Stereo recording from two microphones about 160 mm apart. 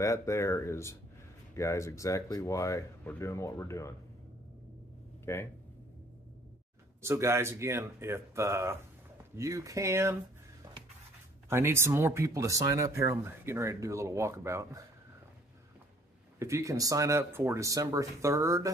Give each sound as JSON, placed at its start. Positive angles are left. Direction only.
{"t": 0.0, "sound": "speech", "side_deg": 20}
{"t": 5.2, "sound": "speech", "side_deg": 15}
{"t": 7.0, "sound": "speech", "side_deg": -15}
{"t": 11.4, "sound": "speech", "side_deg": -15}
{"t": 16.3, "sound": "speech", "side_deg": -20}